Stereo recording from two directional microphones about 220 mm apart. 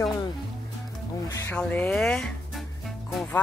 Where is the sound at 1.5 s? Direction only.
5° left (ahead or behind).